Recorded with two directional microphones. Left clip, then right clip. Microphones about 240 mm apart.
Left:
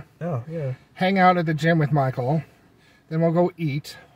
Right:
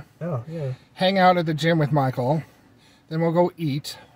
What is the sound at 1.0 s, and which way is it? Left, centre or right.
Speech, centre.